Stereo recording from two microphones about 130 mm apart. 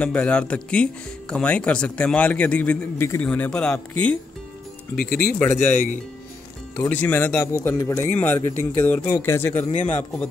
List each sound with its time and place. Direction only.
0.0 s a man's voice: 10° left (ahead or behind)
6.9 s a man's voice: 15° left (ahead or behind)